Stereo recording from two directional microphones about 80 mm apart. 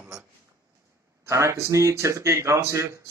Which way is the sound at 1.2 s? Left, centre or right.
Right.